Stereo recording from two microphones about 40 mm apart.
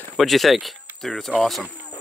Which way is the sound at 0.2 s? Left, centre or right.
Centre.